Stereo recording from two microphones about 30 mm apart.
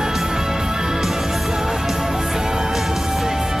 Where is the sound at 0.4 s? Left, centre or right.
Centre.